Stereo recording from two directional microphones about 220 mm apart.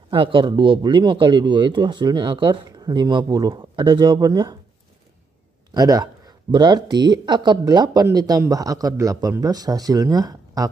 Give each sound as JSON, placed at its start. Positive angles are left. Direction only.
{"t": 0.1, "sound": "speech", "side_deg": -25}
{"t": 5.8, "sound": "speech", "side_deg": -15}